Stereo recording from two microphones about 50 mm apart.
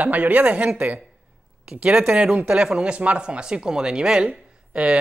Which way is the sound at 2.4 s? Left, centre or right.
Centre.